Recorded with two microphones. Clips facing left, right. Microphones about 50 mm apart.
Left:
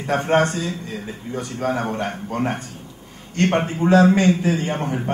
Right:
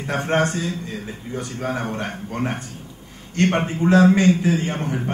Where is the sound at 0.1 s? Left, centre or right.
Left.